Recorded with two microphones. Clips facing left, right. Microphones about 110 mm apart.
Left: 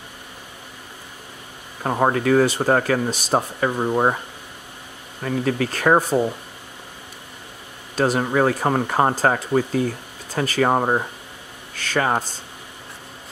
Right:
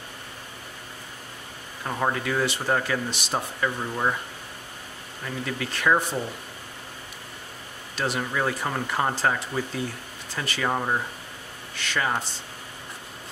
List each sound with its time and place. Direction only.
1.8 s speech: 45° left (ahead or behind)
5.2 s speech: 45° left (ahead or behind)
7.9 s speech: 45° left (ahead or behind)